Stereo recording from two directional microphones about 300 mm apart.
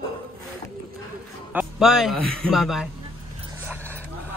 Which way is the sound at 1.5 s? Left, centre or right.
Centre.